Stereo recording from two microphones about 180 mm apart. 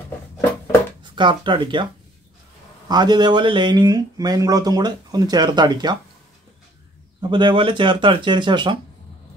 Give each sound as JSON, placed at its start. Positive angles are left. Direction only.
{"t": 1.1, "sound": "speech", "side_deg": -25}
{"t": 2.9, "sound": "speech", "side_deg": -25}
{"t": 7.2, "sound": "speech", "side_deg": -25}